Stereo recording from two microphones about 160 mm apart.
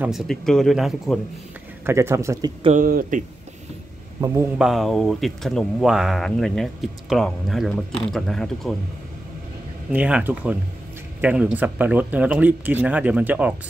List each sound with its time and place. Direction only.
0.0 s speech: centre (ahead or behind)
1.9 s speech: 15° right (ahead or behind)
2.8 s speech: 60° right (ahead or behind)
4.6 s speech: centre (ahead or behind)
9.8 s speech: 5° right (ahead or behind)